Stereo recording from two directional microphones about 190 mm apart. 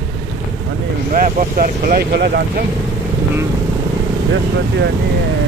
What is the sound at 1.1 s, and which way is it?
Speech, 45° right (ahead or behind).